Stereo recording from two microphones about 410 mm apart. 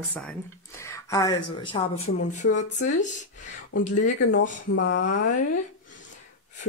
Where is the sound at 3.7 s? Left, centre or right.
Left.